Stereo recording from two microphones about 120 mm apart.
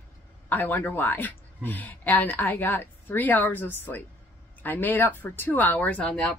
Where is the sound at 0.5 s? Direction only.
15° left (ahead or behind).